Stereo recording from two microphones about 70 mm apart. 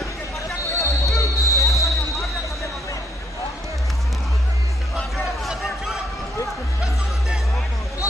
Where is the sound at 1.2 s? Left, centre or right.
Left.